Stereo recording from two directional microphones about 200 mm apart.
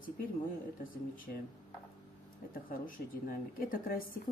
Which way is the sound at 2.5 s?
45° left (ahead or behind).